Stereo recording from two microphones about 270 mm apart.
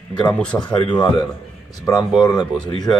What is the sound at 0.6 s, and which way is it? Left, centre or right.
Speech, centre.